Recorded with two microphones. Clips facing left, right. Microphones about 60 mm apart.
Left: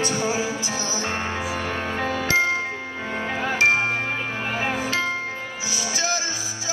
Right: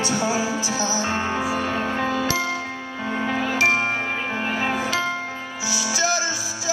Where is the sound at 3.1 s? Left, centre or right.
Centre.